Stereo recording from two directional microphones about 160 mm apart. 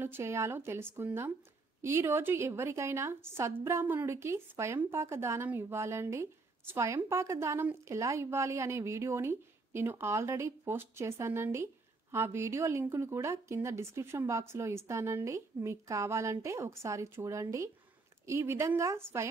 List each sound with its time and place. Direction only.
0.0 s a woman's voice: 15° right (ahead or behind)